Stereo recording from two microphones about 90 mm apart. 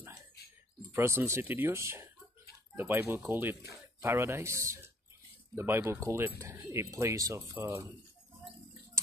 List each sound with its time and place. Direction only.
0.9 s speech: 30° right (ahead or behind)